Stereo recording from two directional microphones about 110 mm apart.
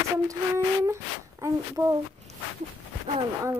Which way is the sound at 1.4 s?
30° right (ahead or behind).